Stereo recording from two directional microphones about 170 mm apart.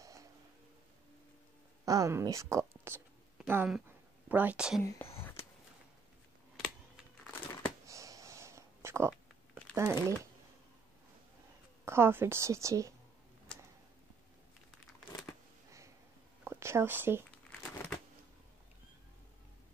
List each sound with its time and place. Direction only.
0.0 s music: 20° right (ahead or behind)
1.9 s a woman's voice: 20° right (ahead or behind)
4.8 s whispering: 15° left (ahead or behind)
7.8 s a sound: 20° right (ahead or behind)
9.8 s a woman's voice: 15° right (ahead or behind)
11.8 s a woman's voice: 15° right (ahead or behind)
16.4 s speech: 15° right (ahead or behind)
17.5 s crumpling: 10° left (ahead or behind)